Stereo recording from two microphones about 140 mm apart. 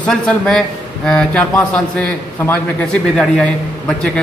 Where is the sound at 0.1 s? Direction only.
5° left (ahead or behind).